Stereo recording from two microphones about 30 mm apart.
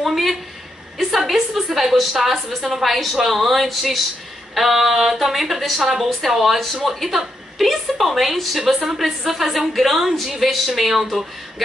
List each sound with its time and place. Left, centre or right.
0.9 s a woman's voice: centre
4.7 s a woman's voice: centre
5.8 s a woman's voice: centre
6.0 s a woman's voice: centre